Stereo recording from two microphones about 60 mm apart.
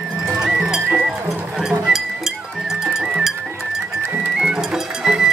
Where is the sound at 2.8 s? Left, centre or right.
Centre.